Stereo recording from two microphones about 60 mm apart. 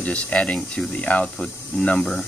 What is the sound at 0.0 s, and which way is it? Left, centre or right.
Speech, left.